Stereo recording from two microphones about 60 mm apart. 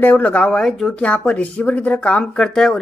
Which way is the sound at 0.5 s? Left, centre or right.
Centre.